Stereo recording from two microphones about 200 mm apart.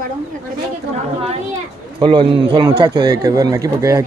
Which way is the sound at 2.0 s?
25° right (ahead or behind).